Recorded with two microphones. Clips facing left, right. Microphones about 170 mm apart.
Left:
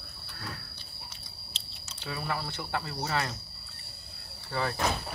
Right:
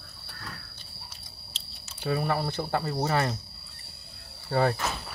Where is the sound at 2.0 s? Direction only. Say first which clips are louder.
Right 7 dB; 45° right (ahead or behind).